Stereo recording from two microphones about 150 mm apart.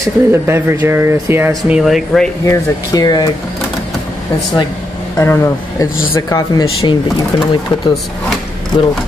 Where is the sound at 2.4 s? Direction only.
25° left (ahead or behind).